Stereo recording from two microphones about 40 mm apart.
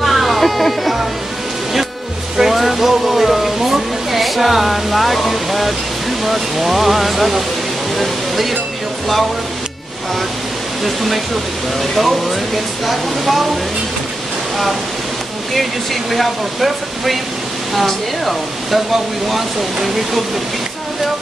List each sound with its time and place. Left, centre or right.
0.0 s music: centre
2.3 s a sound: centre
8.0 s speech: centre
10.8 s speech: centre
15.5 s speech: centre